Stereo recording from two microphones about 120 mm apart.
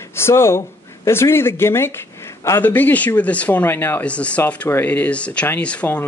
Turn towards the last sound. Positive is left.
turn(degrees=10)  # may be behind; listen again after turning